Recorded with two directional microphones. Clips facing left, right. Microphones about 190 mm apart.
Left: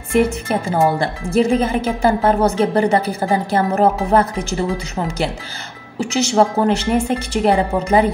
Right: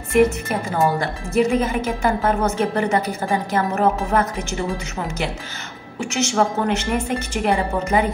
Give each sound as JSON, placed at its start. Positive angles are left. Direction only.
{"t": 0.1, "sound": "a woman's voice", "side_deg": 30}
{"t": 5.9, "sound": "speech", "side_deg": 35}